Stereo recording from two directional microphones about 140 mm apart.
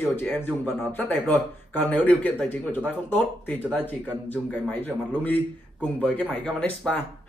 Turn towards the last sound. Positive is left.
turn(degrees=10)  # may be behind; listen again after turning